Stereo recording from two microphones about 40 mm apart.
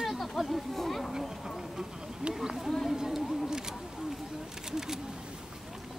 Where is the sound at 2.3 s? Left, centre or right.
Centre.